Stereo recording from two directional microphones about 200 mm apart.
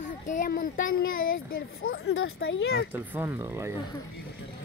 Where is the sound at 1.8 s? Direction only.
90° left.